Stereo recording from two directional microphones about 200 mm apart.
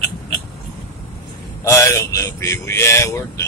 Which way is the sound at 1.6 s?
15° left (ahead or behind).